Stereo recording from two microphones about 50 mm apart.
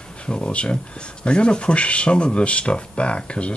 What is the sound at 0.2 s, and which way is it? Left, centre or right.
Speech, left.